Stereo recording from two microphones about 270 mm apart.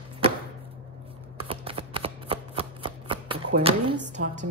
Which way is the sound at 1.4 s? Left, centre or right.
Centre.